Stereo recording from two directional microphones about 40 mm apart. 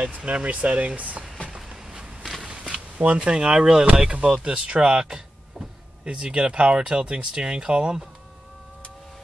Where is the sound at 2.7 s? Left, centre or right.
Right.